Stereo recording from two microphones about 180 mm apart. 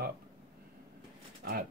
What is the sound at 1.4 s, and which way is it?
Speech, 60° right (ahead or behind).